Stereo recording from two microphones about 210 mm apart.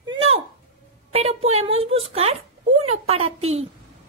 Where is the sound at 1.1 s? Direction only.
30° right (ahead or behind).